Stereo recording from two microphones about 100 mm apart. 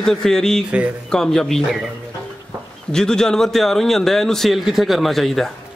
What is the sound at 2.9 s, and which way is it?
A man's voice, 5° left (ahead or behind).